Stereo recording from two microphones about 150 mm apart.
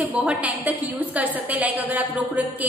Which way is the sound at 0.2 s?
10° right (ahead or behind).